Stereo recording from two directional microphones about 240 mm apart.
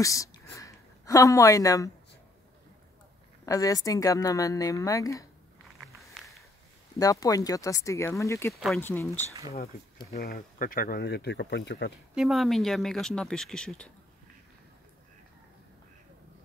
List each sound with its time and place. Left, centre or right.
0.0 s speech: centre
3.4 s speech: centre
5.8 s a sound: centre
7.0 s speech: centre
10.1 s speech: left
12.2 s speech: centre